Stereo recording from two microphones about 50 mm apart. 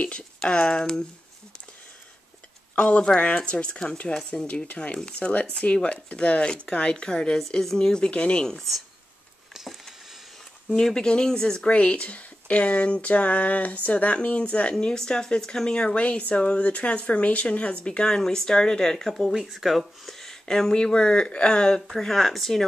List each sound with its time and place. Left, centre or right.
0.4 s speech: centre
2.7 s speech: left
10.8 s speech: centre
21.8 s speech: centre